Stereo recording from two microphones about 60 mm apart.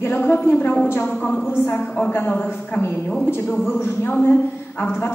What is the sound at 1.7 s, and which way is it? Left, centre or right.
Speech, centre.